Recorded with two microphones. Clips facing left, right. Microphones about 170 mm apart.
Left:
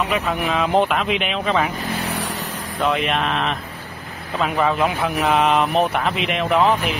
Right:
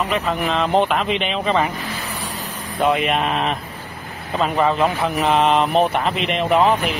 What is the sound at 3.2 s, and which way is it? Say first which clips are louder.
Speech: right 1 dB; 40° right (ahead or behind).